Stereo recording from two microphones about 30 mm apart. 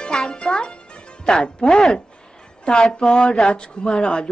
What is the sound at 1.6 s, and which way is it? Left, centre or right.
Speech, left.